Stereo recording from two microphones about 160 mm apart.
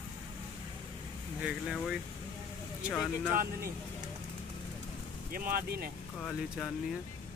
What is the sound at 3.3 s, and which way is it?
Speech, 65° right (ahead or behind).